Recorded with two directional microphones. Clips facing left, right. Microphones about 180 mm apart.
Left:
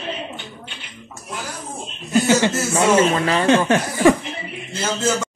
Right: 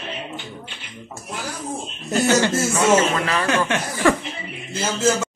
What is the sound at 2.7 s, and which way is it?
Speech, 30° left (ahead or behind).